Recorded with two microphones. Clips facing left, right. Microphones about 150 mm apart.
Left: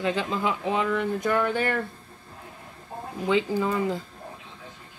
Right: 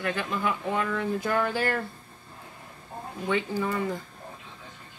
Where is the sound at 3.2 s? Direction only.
20° left (ahead or behind).